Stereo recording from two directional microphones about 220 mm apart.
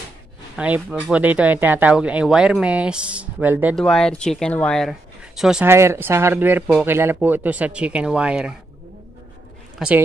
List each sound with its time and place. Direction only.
0.6 s speech: 5° right (ahead or behind)
3.8 s speech: 5° left (ahead or behind)
9.8 s a woman's voice: 5° right (ahead or behind)